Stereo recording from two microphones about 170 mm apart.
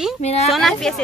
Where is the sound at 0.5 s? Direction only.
Centre (ahead or behind).